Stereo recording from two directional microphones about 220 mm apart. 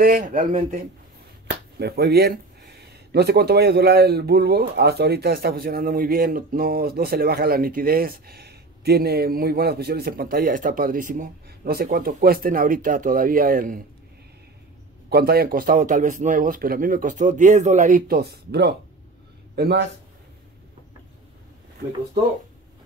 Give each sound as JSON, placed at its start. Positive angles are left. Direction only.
{"t": 0.0, "sound": "speech", "side_deg": -40}
{"t": 15.0, "sound": "a man's voice", "side_deg": -45}